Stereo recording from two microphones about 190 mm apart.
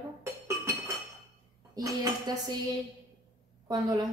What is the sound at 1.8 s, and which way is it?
Speech, 20° right (ahead or behind).